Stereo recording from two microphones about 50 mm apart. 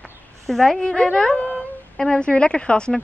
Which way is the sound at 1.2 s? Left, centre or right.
Left.